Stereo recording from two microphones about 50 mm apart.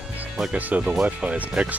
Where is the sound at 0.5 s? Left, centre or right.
Right.